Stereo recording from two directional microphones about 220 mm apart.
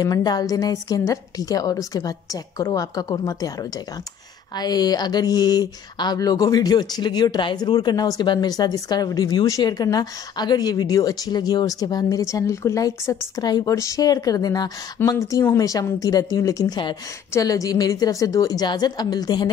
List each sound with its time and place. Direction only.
0.0 s speech: 15° left (ahead or behind)